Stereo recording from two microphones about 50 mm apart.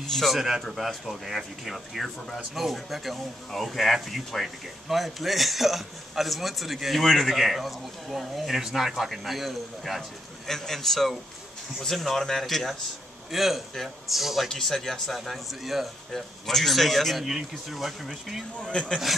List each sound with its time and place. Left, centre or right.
0.0 s speech: centre
18.6 s a man's voice: centre